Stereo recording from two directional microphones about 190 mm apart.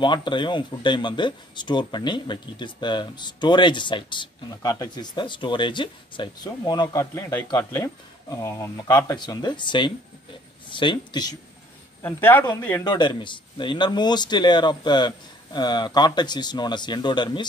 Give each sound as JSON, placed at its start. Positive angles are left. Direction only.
{"t": 0.0, "sound": "speech", "side_deg": 25}
{"t": 12.0, "sound": "speech", "side_deg": 10}